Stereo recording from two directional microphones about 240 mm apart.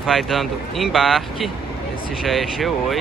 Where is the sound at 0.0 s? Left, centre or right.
Centre.